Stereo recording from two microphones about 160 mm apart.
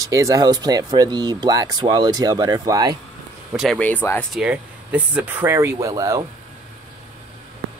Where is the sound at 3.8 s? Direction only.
10° left (ahead or behind).